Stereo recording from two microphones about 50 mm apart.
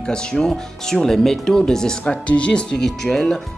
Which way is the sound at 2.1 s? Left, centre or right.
Left.